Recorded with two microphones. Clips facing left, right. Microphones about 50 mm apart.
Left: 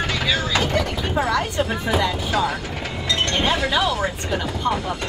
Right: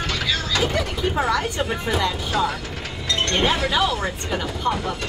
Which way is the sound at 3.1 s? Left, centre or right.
Left.